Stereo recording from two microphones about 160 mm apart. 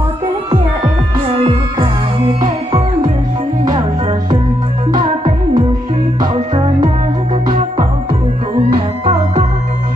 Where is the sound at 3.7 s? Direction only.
25° right (ahead or behind).